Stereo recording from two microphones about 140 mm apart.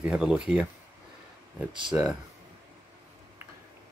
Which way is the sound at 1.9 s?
5° right (ahead or behind).